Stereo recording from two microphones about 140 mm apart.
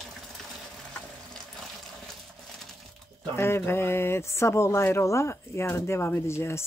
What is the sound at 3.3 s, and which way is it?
Speech, 15° left (ahead or behind).